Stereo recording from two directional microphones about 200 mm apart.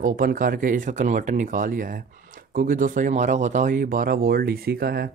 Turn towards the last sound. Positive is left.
turn(degrees=-50)  # may be behind; listen again after turning